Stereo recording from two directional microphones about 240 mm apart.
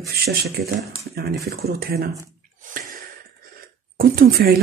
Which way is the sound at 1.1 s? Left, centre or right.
Right.